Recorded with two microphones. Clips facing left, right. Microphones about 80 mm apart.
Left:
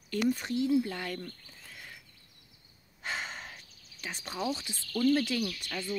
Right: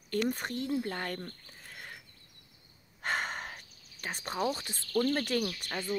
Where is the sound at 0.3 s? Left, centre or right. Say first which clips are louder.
Left 5 dB; right.